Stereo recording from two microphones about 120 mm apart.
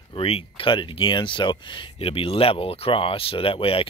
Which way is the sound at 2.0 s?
50° left (ahead or behind).